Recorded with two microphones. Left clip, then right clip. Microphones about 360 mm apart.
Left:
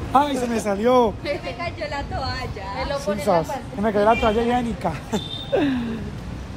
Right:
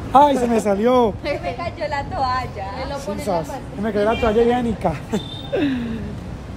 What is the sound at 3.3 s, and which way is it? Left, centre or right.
A woman's voice, centre.